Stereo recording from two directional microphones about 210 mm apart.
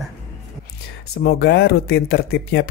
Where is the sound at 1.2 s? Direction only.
50° left (ahead or behind).